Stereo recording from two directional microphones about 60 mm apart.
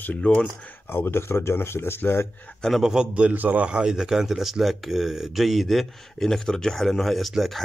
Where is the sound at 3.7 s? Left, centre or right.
Centre.